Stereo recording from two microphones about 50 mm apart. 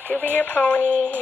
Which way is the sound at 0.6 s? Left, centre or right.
Left.